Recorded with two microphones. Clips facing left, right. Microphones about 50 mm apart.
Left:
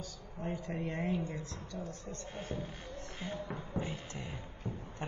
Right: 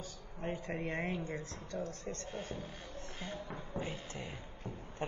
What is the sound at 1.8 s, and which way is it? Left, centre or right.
Speech, right.